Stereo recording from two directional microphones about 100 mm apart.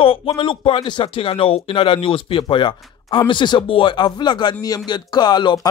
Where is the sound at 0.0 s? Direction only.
65° left (ahead or behind).